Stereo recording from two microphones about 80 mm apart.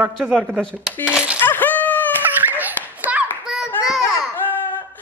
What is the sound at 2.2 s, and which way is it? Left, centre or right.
Laughter, right.